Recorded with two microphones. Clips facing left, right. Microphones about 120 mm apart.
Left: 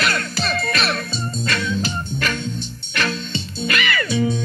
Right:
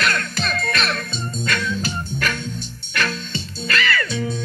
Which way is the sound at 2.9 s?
Centre (ahead or behind).